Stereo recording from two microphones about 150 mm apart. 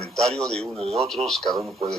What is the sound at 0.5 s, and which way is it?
Speech, 45° right (ahead or behind).